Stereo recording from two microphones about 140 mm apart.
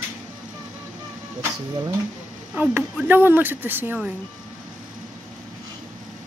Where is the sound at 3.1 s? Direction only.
15° right (ahead or behind).